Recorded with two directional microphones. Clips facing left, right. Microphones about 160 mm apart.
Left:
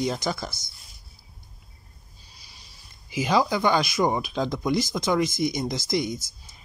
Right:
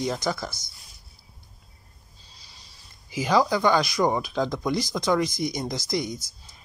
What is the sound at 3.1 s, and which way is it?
Speech, 15° left (ahead or behind).